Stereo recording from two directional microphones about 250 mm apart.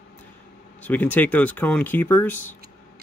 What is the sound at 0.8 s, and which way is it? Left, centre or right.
Speech, centre.